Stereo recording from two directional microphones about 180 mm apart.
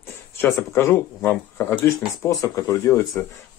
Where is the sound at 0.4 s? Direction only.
15° left (ahead or behind).